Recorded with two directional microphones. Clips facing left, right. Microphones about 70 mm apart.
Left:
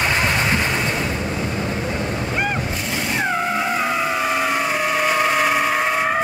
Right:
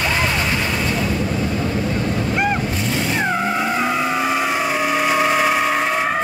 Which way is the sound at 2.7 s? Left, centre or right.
Centre.